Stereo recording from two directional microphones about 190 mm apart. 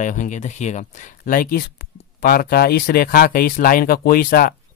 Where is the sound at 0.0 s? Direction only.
40° left (ahead or behind).